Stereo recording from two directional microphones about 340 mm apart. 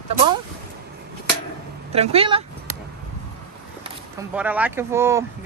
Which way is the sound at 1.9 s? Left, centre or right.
Centre.